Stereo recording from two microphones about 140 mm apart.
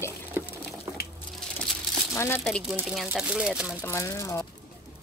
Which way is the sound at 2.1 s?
20° left (ahead or behind).